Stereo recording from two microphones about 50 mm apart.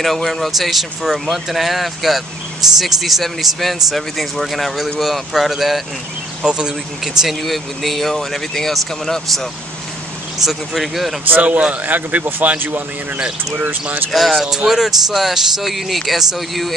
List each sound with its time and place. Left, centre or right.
0.0 s speech: centre
6.4 s speech: centre
7.2 s speech: centre
11.2 s a man's voice: right
14.1 s speech: centre